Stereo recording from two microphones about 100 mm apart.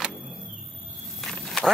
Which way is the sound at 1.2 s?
Centre (ahead or behind).